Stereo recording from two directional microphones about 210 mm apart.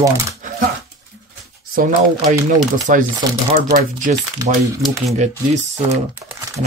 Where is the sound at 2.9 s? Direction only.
40° right (ahead or behind).